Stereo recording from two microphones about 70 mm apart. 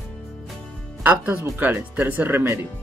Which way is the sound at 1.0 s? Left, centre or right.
Right.